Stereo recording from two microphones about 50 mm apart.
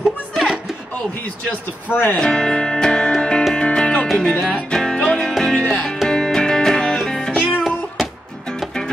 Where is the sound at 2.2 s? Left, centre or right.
Centre.